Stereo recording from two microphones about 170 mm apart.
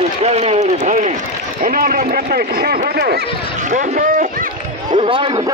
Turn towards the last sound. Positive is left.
turn(degrees=-30)  # may be behind; listen again after turning